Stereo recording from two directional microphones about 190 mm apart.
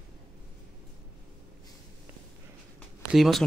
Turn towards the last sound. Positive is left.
turn(degrees=0)  # may be behind; listen again after turning